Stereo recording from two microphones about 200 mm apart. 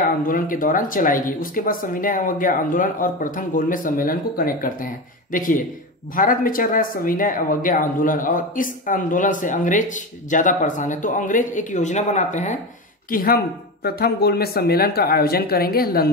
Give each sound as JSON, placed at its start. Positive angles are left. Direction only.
{"t": 0.3, "sound": "speech", "side_deg": 45}
{"t": 13.1, "sound": "speech", "side_deg": 45}